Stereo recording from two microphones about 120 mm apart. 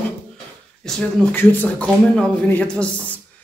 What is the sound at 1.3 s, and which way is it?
Speech, 15° left (ahead or behind).